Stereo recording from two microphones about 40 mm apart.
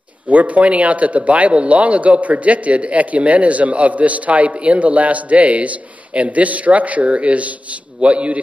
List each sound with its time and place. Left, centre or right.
0.3 s speech: right